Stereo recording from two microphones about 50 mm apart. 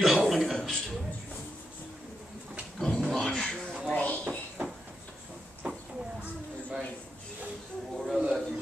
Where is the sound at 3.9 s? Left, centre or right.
Left.